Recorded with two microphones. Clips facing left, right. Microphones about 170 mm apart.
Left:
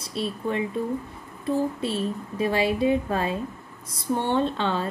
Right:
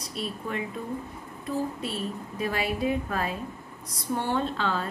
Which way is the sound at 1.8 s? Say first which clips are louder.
Left 5 dB; 30° left (ahead or behind).